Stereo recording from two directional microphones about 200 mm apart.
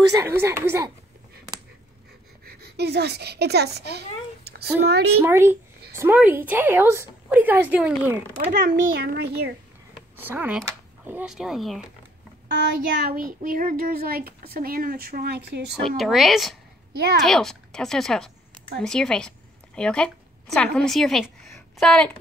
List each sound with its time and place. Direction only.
0.1 s a woman's voice: 15° right (ahead or behind)
2.4 s a woman's voice: 55° right (ahead or behind)
5.2 s a woman's voice: 10° right (ahead or behind)
8.7 s a child's voice: 55° right (ahead or behind)
10.1 s speech: 10° right (ahead or behind)
12.5 s a child's voice: 50° right (ahead or behind)
16.0 s a woman's voice: centre (ahead or behind)